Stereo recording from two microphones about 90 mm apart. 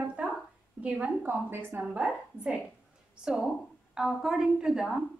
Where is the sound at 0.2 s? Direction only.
15° right (ahead or behind).